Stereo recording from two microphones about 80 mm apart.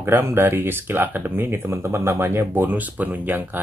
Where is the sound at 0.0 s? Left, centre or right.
Right.